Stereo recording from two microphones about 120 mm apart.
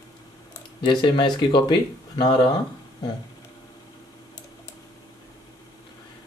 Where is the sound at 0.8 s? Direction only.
40° left (ahead or behind).